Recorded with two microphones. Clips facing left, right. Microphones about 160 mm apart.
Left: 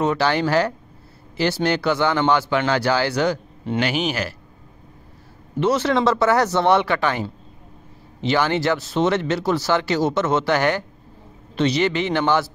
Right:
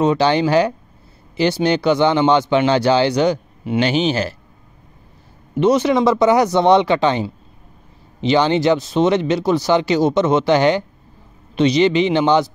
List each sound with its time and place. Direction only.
0.0 s speech: 20° right (ahead or behind)
3.8 s speech: 25° right (ahead or behind)
5.6 s speech: 15° right (ahead or behind)